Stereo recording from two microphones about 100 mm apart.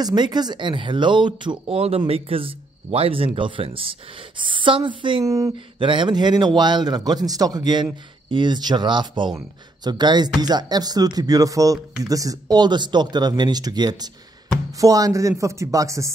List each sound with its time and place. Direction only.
0.0 s a man's voice: 45° right (ahead or behind)
1.7 s speech: 85° right
3.3 s a woman's voice: 60° right (ahead or behind)
5.2 s speech: 35° right (ahead or behind)
5.8 s a man's voice: 55° right (ahead or behind); by 16.1 s 30° right (ahead or behind)